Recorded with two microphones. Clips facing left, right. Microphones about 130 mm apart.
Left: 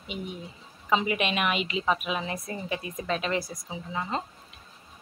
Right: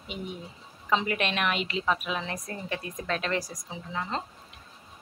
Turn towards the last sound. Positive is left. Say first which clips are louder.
# left 1 dB
turn(degrees=10)  # may be behind; listen again after turning